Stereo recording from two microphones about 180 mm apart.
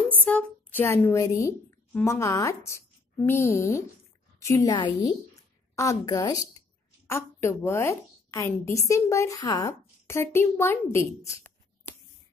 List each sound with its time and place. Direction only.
0.2 s a woman's voice: 10° left (ahead or behind)